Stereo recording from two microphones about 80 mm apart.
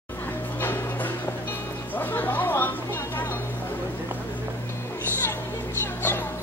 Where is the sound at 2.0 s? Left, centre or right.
Left.